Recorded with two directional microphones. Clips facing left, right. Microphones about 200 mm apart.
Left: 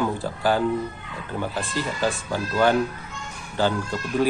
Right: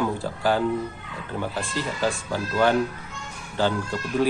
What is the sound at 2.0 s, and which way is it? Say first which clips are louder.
Speech: even; 5° left (ahead or behind).